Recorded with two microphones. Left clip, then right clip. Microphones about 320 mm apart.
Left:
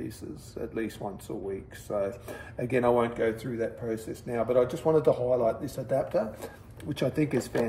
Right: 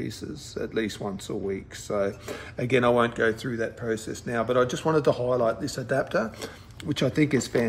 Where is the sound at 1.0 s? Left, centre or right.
Right.